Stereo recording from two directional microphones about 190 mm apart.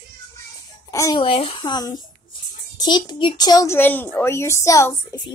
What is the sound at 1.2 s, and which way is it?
A child's voice, 30° left (ahead or behind).